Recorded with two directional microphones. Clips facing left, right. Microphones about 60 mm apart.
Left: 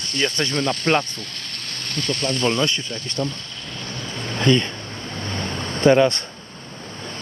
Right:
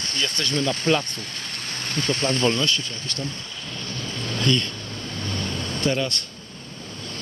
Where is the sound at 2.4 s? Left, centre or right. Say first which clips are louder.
Left 4 dB; left.